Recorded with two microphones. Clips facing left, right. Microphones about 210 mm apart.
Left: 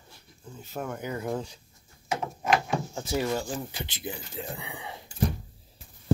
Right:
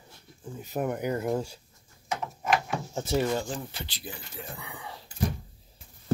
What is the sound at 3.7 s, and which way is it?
A man's voice, 20° left (ahead or behind).